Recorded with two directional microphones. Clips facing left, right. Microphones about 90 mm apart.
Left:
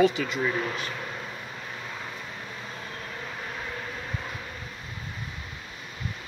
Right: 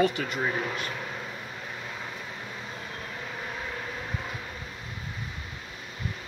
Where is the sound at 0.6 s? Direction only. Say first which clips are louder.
Left 1 dB; 5° right (ahead or behind).